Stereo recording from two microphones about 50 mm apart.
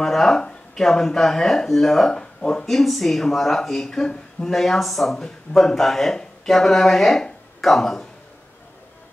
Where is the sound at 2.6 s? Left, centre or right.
Centre.